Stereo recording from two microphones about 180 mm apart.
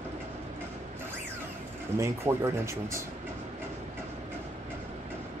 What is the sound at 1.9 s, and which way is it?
Speech, 15° right (ahead or behind).